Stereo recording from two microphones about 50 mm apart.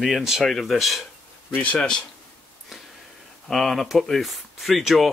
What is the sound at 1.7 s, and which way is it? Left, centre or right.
Speech, centre.